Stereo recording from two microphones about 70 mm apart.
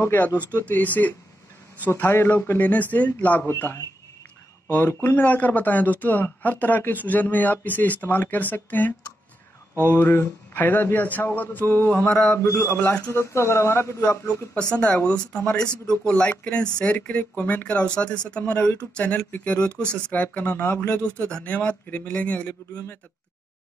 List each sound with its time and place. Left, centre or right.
0.0 s speech: left
3.4 s speech: left
4.6 s speech: left
12.4 s a man's voice: left
14.0 s speech: centre